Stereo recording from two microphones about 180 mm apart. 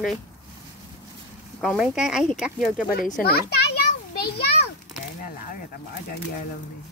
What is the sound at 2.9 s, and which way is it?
Speech, 50° left (ahead or behind).